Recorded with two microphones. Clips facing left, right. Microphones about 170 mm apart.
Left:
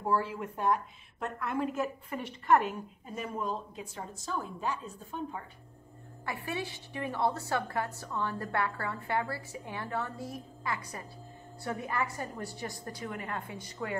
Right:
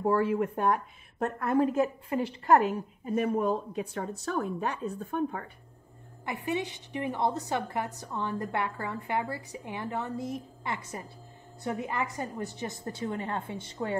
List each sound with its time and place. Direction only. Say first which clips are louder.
0.0 s a woman's voice: right 6 dB; 60° right (ahead or behind); by 2.7 s 35° right (ahead or behind)
3.2 s a woman's voice: right 8 dB; 60° right (ahead or behind)
6.2 s a woman's voice: right 5 dB; 20° right (ahead or behind)